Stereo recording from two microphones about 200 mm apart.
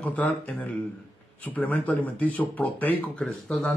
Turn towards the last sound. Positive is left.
turn(degrees=5)  # may be behind; listen again after turning